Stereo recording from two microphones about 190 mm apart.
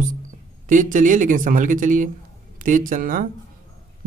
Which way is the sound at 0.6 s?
45° right (ahead or behind).